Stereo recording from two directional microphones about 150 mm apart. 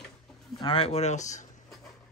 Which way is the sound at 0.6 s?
35° left (ahead or behind).